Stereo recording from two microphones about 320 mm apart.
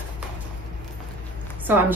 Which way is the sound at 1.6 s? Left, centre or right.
Centre.